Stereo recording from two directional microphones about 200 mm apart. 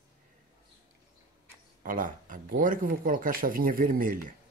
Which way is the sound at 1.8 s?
40° right (ahead or behind).